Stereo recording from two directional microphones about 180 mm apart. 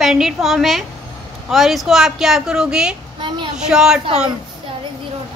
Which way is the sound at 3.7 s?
5° right (ahead or behind).